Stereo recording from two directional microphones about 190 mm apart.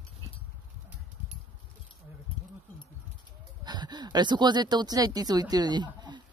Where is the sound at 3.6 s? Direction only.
20° right (ahead or behind).